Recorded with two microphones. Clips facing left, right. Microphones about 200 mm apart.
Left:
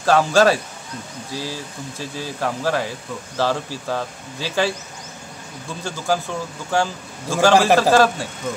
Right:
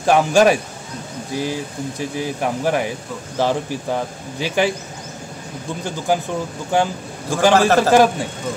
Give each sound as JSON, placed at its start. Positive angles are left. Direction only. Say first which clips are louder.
{"t": 0.0, "sound": "speech", "louder": "right 2 dB", "side_deg": -15}
{"t": 5.9, "sound": "speech", "louder": "right 2 dB", "side_deg": -15}
{"t": 7.5, "sound": "a man's voice", "louder": "even", "side_deg": 15}
{"t": 7.9, "sound": "speech", "louder": "right 2 dB", "side_deg": -15}